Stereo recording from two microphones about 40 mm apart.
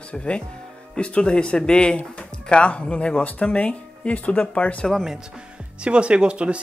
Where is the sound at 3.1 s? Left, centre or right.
Left.